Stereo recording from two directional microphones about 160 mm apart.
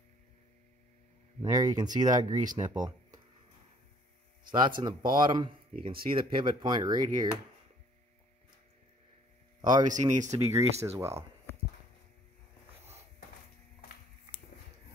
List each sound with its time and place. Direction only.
1.4 s speech: 25° right (ahead or behind)
4.5 s speech: 30° right (ahead or behind)
9.6 s speech: 25° right (ahead or behind)
9.8 s speech: 50° right (ahead or behind)
10.3 s speech: 20° right (ahead or behind)